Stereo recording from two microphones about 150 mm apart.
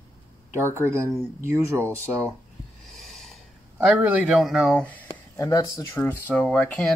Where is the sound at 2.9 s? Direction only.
Centre (ahead or behind).